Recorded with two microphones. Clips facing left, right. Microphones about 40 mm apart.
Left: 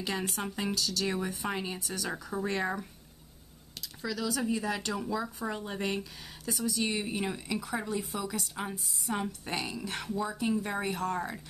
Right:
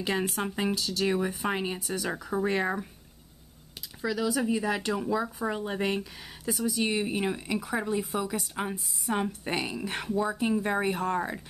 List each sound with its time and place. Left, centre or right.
0.0 s a woman's voice: centre
4.0 s a woman's voice: centre